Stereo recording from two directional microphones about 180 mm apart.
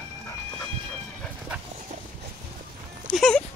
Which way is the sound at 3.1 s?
5° left (ahead or behind).